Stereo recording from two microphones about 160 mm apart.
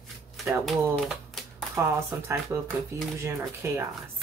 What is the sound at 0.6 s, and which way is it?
Speech, centre (ahead or behind).